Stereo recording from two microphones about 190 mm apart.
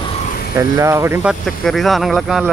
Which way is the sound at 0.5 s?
15° right (ahead or behind).